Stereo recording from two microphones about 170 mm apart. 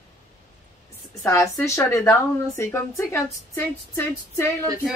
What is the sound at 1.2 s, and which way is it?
Speech, 20° left (ahead or behind).